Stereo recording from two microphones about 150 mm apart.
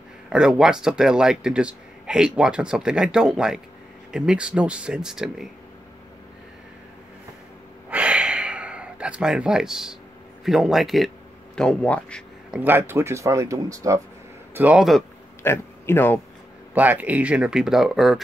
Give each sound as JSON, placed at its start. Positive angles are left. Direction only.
{"t": 0.3, "sound": "a man's voice", "side_deg": -5}
{"t": 7.9, "sound": "gasp", "side_deg": -10}
{"t": 10.4, "sound": "a man's voice", "side_deg": 0}
{"t": 12.4, "sound": "speech", "side_deg": -10}
{"t": 14.5, "sound": "a man's voice", "side_deg": -10}
{"t": 15.4, "sound": "speech", "side_deg": 15}
{"t": 16.7, "sound": "a man's voice", "side_deg": -10}